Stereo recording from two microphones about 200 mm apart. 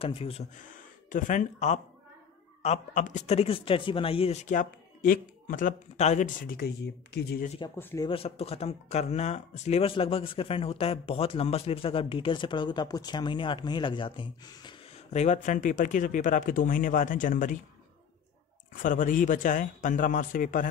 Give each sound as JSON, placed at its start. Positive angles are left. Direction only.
{"t": 0.0, "sound": "speech", "side_deg": 30}
{"t": 7.4, "sound": "speech", "side_deg": 30}
{"t": 7.7, "sound": "speech", "side_deg": 15}
{"t": 8.1, "sound": "speech", "side_deg": 30}
{"t": 15.1, "sound": "speech", "side_deg": 35}
{"t": 18.7, "sound": "speech", "side_deg": 40}